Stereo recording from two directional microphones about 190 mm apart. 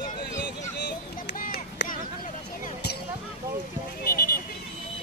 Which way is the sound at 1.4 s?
50° left (ahead or behind).